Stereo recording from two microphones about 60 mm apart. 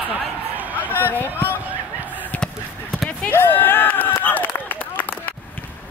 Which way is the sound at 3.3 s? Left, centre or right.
Left.